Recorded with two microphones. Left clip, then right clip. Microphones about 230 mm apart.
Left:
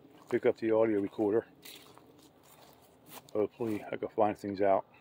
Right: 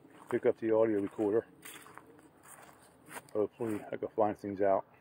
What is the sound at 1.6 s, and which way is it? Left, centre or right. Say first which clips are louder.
Walk: right 1 dB; centre.